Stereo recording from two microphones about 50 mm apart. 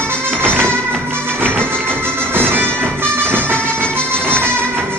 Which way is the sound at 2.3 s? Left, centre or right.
Right.